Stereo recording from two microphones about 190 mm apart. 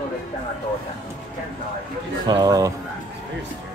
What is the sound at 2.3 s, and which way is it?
Speech, 20° right (ahead or behind).